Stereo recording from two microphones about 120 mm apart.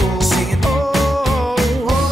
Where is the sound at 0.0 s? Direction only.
Centre (ahead or behind).